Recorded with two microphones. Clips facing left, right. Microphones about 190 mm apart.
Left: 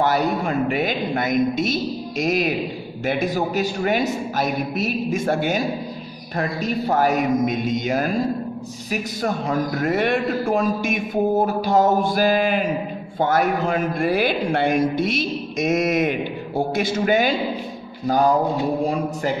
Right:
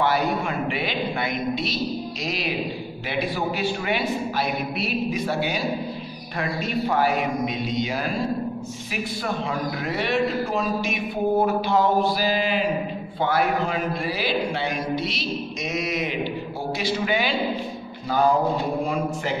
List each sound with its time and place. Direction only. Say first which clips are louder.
0.0 s a man's voice: left 2 dB; 40° left (ahead or behind)